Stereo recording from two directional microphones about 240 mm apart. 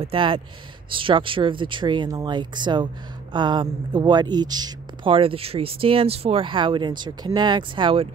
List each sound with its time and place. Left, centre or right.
0.0 s speech: right